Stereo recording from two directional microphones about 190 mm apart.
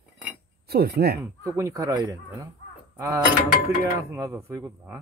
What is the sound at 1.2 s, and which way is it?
Speech, 15° right (ahead or behind).